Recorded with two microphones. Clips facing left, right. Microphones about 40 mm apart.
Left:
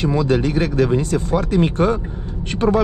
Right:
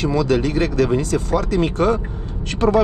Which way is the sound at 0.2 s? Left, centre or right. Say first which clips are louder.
Right 1 dB; left.